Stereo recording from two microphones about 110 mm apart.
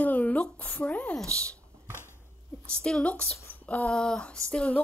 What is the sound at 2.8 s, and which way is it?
Speech, 10° left (ahead or behind).